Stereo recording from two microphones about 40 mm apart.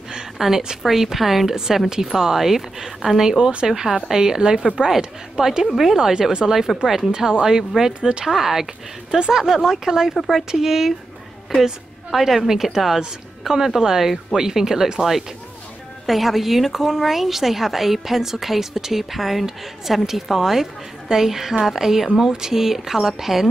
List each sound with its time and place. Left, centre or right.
0.4 s speech: centre
5.7 s speech: centre
5.9 s speech: centre
8.3 s speech: centre
10.5 s a woman's voice: centre